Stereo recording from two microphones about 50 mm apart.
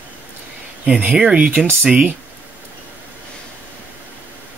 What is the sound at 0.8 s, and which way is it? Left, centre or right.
Speech, right.